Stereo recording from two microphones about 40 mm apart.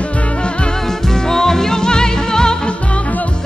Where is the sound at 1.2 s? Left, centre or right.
Centre.